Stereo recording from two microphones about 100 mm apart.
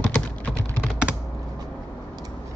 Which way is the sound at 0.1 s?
20° left (ahead or behind).